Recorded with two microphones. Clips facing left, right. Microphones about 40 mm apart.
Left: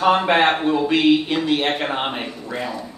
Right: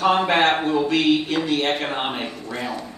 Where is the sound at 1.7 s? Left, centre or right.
Centre.